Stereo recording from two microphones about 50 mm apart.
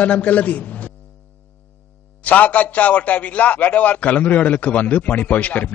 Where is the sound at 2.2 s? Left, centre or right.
Left.